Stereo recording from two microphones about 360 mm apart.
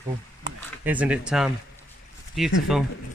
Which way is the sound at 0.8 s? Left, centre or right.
Centre.